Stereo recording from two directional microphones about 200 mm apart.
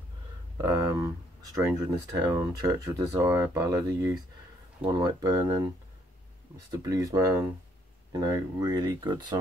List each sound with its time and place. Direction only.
0.6 s speech: 15° right (ahead or behind)
6.7 s speech: 15° right (ahead or behind)